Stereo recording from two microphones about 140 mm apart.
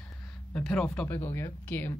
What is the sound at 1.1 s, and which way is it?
Speech, 20° left (ahead or behind).